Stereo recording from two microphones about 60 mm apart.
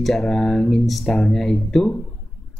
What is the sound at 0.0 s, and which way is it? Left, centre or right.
A man's voice, centre.